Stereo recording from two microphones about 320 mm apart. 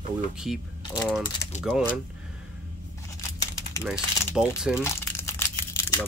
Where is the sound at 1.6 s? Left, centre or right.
Centre.